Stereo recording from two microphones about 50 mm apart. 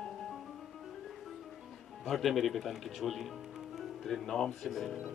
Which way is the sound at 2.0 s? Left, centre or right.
Centre.